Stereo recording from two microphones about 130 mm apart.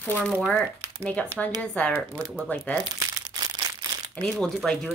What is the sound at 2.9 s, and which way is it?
Crumpling, 30° right (ahead or behind).